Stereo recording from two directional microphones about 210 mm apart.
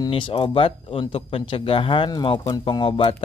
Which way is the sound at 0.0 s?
25° left (ahead or behind).